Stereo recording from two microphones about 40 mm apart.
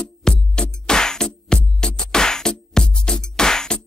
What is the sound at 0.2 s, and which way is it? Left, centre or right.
Music, centre.